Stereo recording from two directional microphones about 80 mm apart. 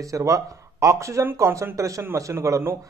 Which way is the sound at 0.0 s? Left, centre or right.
Right.